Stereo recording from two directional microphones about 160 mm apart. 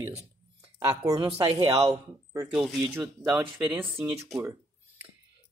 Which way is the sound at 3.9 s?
Centre (ahead or behind).